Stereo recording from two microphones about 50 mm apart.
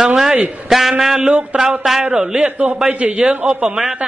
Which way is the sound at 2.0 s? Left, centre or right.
Centre.